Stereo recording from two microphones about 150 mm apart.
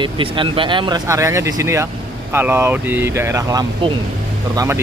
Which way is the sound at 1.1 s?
20° right (ahead or behind).